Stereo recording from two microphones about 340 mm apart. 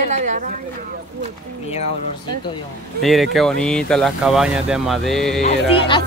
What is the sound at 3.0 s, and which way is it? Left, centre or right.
Speech, centre.